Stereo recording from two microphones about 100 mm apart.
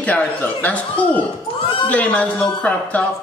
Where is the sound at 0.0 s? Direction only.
15° left (ahead or behind).